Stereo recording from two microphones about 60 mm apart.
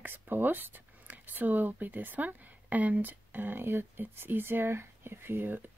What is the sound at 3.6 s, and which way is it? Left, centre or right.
Speech, right.